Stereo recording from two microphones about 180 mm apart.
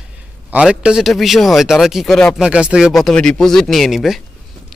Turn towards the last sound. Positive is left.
turn(degrees=0)  # may be behind; listen again after turning